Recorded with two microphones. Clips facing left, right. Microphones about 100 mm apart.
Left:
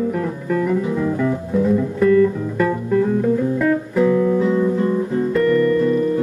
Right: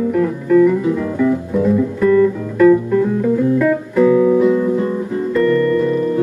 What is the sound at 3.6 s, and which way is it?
Music, centre (ahead or behind).